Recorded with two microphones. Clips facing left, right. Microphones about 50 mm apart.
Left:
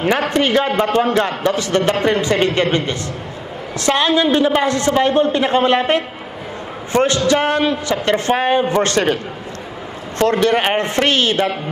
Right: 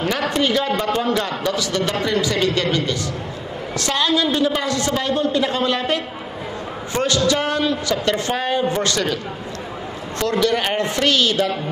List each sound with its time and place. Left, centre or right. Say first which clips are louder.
0.0 s a man's voice: left 4 dB; left